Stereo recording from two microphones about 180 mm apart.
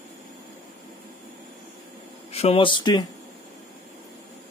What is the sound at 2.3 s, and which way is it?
Speech, 35° left (ahead or behind).